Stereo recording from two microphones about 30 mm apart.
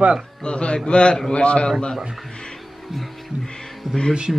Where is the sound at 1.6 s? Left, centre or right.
Left.